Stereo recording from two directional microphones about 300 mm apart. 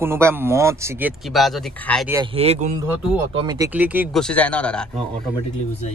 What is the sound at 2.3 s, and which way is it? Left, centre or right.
Speech, right.